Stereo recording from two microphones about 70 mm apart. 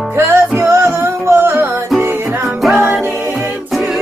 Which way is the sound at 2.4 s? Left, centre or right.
Centre.